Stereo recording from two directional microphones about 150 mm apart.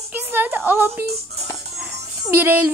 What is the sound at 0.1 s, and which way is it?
Speech, 15° right (ahead or behind).